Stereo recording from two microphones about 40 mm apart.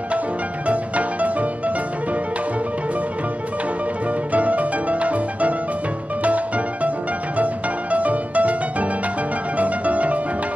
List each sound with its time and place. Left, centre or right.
0.7 s music: right
4.3 s music: right